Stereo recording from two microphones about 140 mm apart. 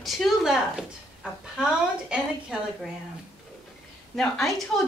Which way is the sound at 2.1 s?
5° right (ahead or behind).